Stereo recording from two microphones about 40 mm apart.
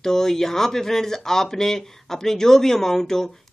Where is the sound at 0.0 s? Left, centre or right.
Centre.